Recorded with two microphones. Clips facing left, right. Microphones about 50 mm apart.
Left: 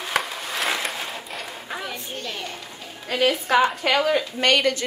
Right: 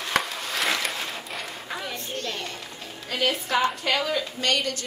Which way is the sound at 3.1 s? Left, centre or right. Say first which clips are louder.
Left 5 dB; left.